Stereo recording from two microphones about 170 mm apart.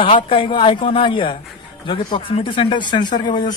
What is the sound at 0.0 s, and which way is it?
Speech, 30° left (ahead or behind).